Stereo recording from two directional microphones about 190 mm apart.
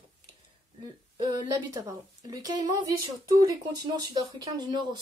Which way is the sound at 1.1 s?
20° right (ahead or behind).